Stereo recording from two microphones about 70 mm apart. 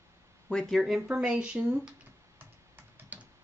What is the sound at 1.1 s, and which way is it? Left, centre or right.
Speech, centre.